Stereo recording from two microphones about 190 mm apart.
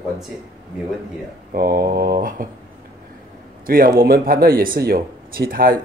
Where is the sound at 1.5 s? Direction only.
50° right (ahead or behind).